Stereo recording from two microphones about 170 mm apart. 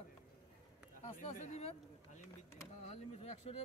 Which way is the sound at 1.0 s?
45° left (ahead or behind).